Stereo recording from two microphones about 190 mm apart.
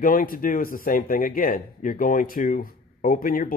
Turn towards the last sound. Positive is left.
turn(degrees=50)  # may be behind; listen again after turning